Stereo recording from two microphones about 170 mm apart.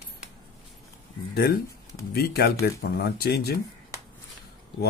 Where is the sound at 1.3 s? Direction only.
65° left (ahead or behind).